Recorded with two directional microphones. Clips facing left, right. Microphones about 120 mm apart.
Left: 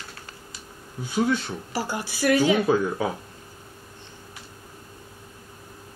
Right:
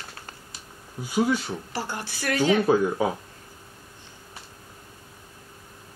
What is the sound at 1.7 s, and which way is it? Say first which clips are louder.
Speech: left 7 dB; 10° left (ahead or behind).